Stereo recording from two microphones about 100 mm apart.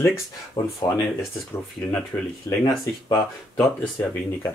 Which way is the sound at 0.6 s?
65° left (ahead or behind).